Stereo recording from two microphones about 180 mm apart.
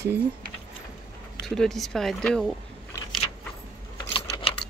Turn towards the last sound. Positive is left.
turn(degrees=30)  # may be behind; listen again after turning